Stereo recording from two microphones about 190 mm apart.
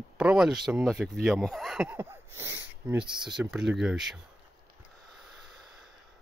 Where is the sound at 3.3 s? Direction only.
5° right (ahead or behind).